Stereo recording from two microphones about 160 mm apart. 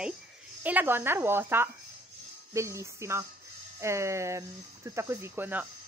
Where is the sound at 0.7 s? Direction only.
10° right (ahead or behind).